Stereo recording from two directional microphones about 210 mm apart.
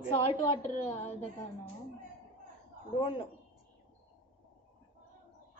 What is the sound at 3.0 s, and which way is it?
Speech, 25° left (ahead or behind).